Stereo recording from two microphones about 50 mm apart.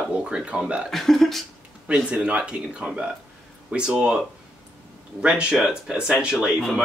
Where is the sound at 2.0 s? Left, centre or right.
Right.